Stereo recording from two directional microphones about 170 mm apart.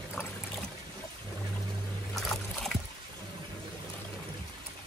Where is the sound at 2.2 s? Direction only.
Centre (ahead or behind).